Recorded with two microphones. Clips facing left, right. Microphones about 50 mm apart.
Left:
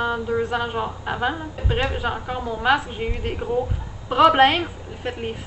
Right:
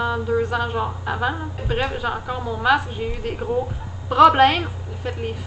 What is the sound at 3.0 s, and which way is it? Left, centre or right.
Speech, left.